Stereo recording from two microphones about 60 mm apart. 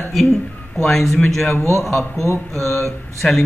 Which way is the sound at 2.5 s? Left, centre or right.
Right.